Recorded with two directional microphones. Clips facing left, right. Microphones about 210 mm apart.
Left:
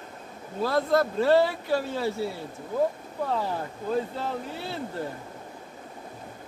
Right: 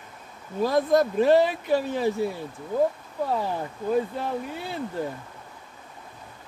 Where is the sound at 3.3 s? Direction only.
15° right (ahead or behind).